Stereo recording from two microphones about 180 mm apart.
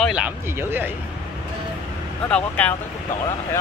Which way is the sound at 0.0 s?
5° right (ahead or behind).